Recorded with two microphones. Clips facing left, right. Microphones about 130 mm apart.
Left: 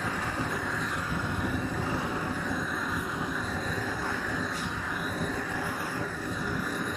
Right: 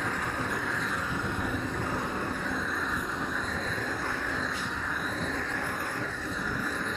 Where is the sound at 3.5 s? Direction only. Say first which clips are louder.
Left 1 dB; 10° left (ahead or behind).